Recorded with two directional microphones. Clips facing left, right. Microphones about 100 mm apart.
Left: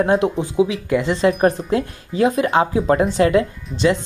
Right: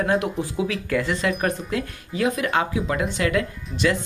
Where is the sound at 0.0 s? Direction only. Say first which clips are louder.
Left 5 dB; 30° left (ahead or behind).